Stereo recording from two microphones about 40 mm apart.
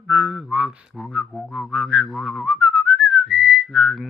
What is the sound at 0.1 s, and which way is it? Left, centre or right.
Music, centre.